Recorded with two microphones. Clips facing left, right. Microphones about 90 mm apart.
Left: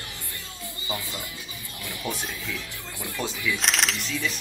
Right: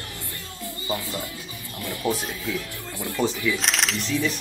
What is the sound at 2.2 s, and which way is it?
Speech, 20° right (ahead or behind).